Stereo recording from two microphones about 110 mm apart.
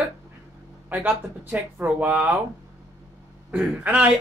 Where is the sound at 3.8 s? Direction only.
15° right (ahead or behind).